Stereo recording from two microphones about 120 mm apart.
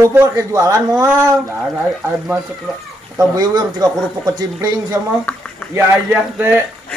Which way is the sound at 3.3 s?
30° right (ahead or behind).